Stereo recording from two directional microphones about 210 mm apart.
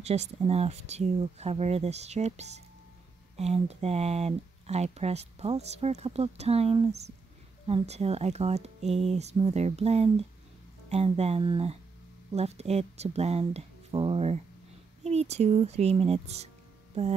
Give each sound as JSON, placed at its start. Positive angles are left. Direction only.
{"t": 0.0, "sound": "speech", "side_deg": -30}